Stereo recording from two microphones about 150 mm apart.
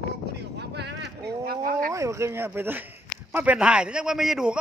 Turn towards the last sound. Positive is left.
turn(degrees=-5)  # may be behind; listen again after turning